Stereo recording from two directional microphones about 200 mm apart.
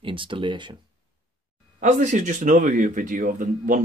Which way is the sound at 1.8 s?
35° right (ahead or behind).